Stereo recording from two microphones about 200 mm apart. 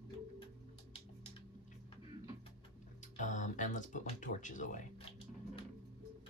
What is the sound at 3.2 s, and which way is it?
Speech, 40° left (ahead or behind).